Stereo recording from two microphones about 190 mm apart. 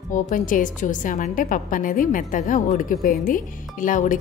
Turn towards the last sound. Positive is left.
turn(degrees=45)  # may be behind; listen again after turning